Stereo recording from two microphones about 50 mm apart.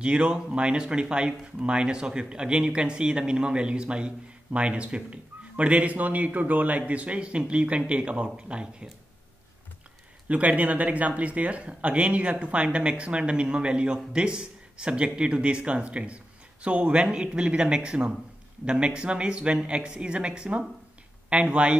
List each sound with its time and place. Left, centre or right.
0.0 s speech: centre
10.2 s speech: right